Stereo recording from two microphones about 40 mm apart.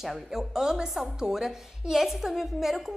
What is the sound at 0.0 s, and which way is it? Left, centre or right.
A woman's voice, centre.